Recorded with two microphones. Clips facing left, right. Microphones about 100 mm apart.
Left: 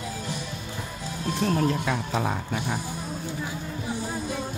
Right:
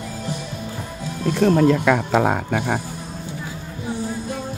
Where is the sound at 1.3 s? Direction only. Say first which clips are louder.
Right 9 dB; 90° right.